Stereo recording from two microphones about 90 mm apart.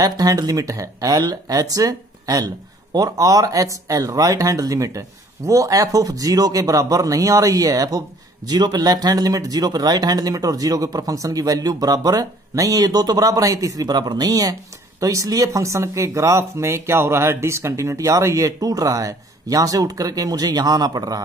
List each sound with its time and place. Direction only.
0.0 s speech: 45° right (ahead or behind)